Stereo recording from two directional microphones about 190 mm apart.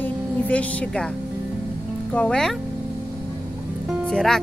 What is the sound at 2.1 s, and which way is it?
Speech, 5° left (ahead or behind).